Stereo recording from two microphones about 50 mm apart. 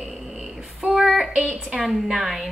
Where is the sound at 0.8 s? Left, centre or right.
Centre.